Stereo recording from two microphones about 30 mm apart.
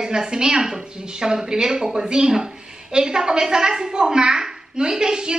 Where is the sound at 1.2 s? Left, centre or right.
Right.